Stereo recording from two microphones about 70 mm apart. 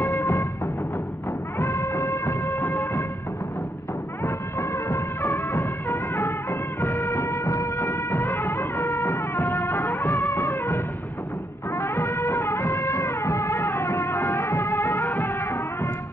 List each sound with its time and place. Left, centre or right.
0.0 s music: left
1.6 s music: left
4.2 s music: left
6.8 s music: left